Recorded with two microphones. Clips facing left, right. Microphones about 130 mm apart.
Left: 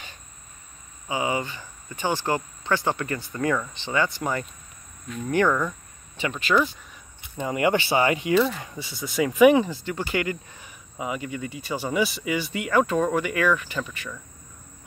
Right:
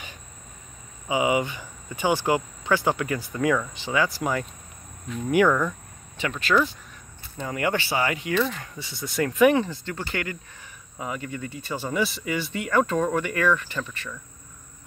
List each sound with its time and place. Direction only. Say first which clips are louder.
1.0 s speech: right 4 dB; 15° right (ahead or behind)
5.5 s speech: right 1 dB; centre (ahead or behind)
7.3 s speech: left 4 dB; 20° left (ahead or behind)
8.8 s speech: left 1 dB; 5° left (ahead or behind)